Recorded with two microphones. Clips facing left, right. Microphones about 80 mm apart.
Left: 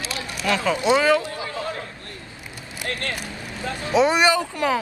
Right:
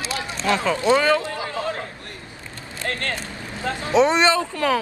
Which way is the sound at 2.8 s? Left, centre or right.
Right.